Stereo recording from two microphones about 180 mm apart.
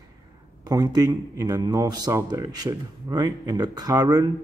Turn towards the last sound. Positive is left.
turn(degrees=-20)  # may be behind; listen again after turning